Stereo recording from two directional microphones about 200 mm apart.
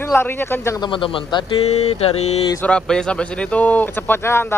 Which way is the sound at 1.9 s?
30° left (ahead or behind).